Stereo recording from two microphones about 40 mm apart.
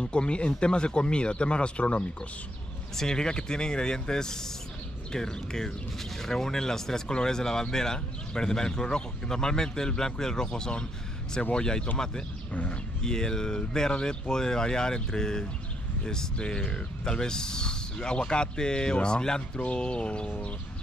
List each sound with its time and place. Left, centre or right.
0.0 s speech: left
3.0 s speech: centre
13.0 s speech: centre